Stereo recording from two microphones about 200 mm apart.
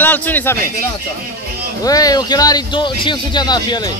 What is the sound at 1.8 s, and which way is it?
Speech, 20° left (ahead or behind).